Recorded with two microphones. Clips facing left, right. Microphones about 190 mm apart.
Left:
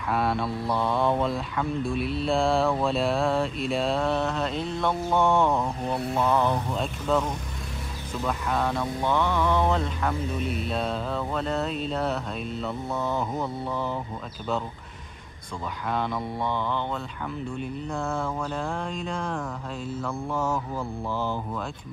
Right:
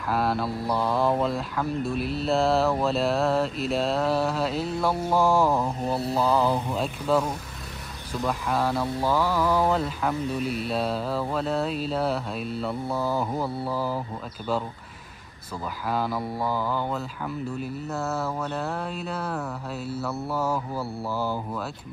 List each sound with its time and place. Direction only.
0.1 s mantra: centre (ahead or behind)
6.0 s mantra: 35° right (ahead or behind)
6.3 s mantra: 5° right (ahead or behind)
15.9 s mantra: 5° right (ahead or behind)